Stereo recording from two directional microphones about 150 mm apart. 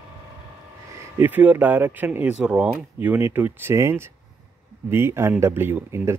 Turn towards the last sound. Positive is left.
turn(degrees=-15)  # may be behind; listen again after turning